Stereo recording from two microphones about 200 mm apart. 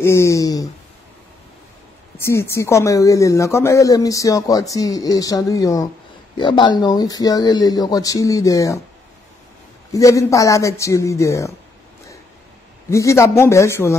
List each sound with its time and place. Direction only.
0.0 s speech: 15° left (ahead or behind)
2.1 s speech: 10° left (ahead or behind)
9.9 s speech: 15° left (ahead or behind)
12.9 s speech: 15° left (ahead or behind)